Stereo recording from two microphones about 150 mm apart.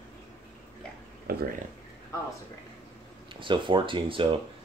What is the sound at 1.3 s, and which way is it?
Speech, 90° right.